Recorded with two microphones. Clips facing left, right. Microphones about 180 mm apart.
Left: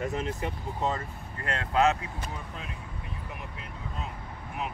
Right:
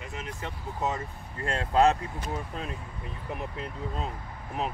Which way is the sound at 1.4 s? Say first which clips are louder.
Right 2 dB; 30° right (ahead or behind).